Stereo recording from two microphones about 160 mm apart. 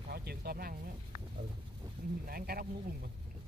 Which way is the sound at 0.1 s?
80° right.